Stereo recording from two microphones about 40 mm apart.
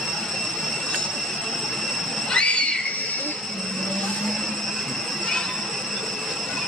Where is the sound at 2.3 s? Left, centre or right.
Left.